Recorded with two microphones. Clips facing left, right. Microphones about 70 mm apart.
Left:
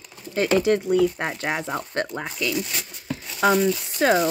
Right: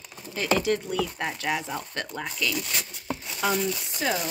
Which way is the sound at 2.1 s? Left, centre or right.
Left.